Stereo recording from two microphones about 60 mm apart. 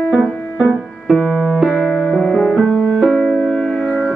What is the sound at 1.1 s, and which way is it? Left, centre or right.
Music, centre.